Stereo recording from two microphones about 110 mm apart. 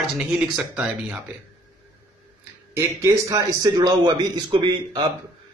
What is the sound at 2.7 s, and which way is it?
Speech, 25° right (ahead or behind).